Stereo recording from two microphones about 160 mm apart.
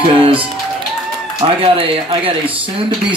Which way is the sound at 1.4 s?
35° right (ahead or behind).